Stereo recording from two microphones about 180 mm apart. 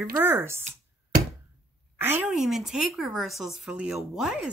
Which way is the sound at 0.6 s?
50° right (ahead or behind).